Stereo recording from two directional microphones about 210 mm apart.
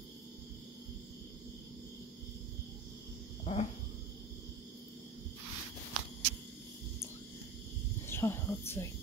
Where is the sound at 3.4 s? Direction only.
30° left (ahead or behind).